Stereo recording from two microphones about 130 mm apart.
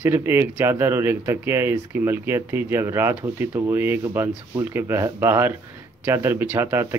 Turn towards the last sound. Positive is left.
turn(degrees=-15)  # may be behind; listen again after turning